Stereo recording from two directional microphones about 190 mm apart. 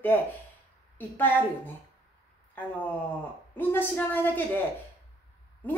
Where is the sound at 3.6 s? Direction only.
10° left (ahead or behind).